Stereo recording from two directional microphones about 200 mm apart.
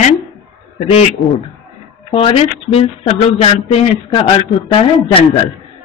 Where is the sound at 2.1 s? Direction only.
30° left (ahead or behind).